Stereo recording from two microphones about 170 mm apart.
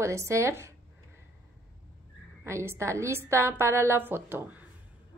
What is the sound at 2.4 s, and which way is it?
A woman's voice, 15° right (ahead or behind).